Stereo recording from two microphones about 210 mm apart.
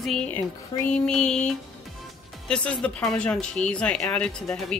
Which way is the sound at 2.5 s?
5° left (ahead or behind).